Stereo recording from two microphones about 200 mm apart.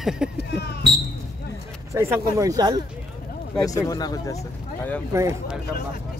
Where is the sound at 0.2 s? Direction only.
5° right (ahead or behind).